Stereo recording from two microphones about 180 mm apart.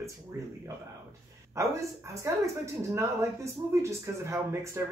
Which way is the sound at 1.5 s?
15° right (ahead or behind).